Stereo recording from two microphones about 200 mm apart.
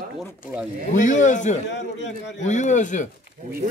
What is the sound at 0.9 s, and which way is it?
Speech, 40° left (ahead or behind).